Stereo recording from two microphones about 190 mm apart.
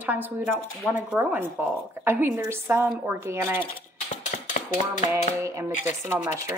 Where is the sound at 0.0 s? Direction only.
10° right (ahead or behind).